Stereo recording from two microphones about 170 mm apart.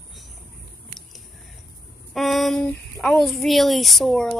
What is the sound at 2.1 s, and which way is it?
Speech, centre (ahead or behind).